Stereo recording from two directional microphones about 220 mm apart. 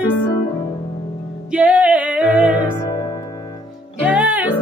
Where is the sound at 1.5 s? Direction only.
5° right (ahead or behind).